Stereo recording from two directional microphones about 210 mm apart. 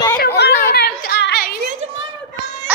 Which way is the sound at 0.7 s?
50° left (ahead or behind).